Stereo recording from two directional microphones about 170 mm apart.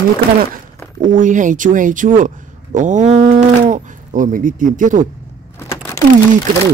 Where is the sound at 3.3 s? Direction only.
50° right (ahead or behind).